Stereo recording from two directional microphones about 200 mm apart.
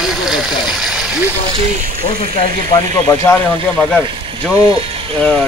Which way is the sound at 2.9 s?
15° left (ahead or behind).